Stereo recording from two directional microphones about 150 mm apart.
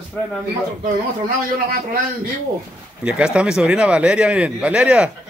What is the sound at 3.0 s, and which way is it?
Speech, 5° right (ahead or behind).